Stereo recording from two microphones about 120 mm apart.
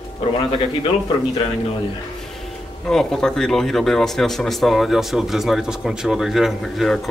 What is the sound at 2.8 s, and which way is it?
Speech, 5° left (ahead or behind).